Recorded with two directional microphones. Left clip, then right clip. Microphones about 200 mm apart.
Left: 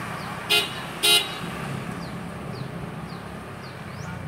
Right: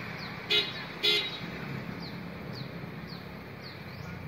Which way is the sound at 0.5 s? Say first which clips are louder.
Left 6 dB; 40° left (ahead or behind).